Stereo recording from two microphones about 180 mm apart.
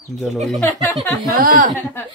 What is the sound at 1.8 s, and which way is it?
Speech, 10° left (ahead or behind).